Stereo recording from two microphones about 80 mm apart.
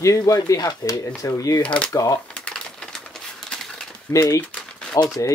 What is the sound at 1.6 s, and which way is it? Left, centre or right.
Speech, centre.